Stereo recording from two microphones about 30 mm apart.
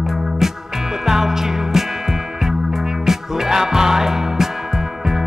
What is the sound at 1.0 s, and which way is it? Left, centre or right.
Music, centre.